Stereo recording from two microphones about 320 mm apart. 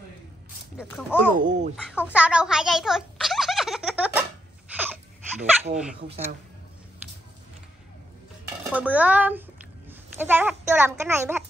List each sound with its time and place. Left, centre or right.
0.7 s a child's voice: centre
1.3 s speech: right
1.9 s a sound: centre
8.7 s a child's voice: centre